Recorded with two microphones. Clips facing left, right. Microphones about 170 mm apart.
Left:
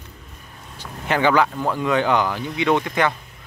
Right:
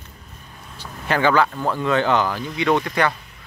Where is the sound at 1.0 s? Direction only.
15° left (ahead or behind).